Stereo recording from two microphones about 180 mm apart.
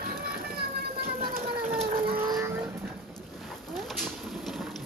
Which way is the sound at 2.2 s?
15° right (ahead or behind).